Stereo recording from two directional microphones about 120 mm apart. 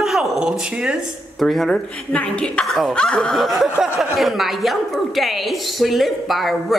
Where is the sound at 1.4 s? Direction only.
Centre (ahead or behind).